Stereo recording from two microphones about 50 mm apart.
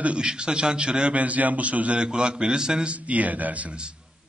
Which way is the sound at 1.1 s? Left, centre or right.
Right.